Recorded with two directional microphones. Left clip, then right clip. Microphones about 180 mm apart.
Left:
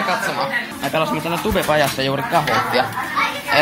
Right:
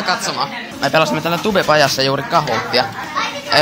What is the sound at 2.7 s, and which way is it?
Speech, 30° right (ahead or behind).